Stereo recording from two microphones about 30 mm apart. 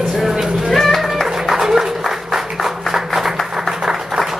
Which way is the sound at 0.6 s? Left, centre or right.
Centre.